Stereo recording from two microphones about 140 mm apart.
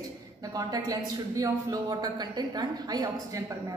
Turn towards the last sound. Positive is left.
turn(degrees=-30)  # may be behind; listen again after turning